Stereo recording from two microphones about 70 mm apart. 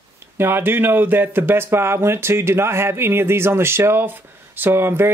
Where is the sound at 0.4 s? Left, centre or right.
Right.